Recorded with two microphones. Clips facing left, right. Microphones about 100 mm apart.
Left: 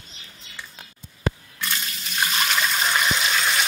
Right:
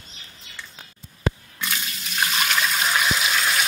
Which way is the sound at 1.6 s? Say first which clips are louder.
Even; centre (ahead or behind).